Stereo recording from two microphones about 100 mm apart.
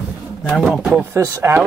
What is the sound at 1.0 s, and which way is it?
Speech, 25° right (ahead or behind).